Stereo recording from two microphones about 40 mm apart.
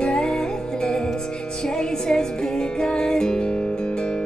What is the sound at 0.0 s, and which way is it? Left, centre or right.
Music, left.